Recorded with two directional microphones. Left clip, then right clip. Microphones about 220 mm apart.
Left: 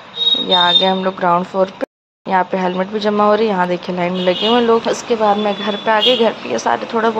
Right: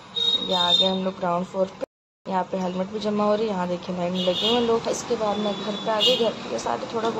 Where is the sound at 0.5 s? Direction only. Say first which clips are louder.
Left 9 dB; 15° left (ahead or behind).